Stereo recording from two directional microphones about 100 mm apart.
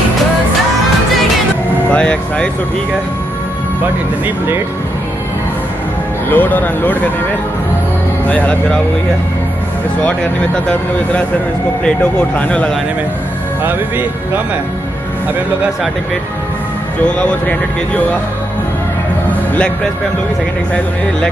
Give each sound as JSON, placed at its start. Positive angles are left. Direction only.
{"t": 1.9, "sound": "speech", "side_deg": 10}
{"t": 6.3, "sound": "speech", "side_deg": 15}
{"t": 8.3, "sound": "speech", "side_deg": 15}
{"t": 10.0, "sound": "speech", "side_deg": 10}
{"t": 13.7, "sound": "speech", "side_deg": -20}
{"t": 17.0, "sound": "speech", "side_deg": 10}